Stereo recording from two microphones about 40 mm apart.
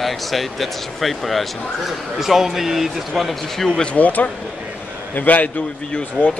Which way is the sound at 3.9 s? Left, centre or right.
Left.